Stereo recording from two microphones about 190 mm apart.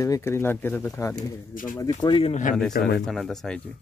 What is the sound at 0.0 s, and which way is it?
Speech, 15° left (ahead or behind).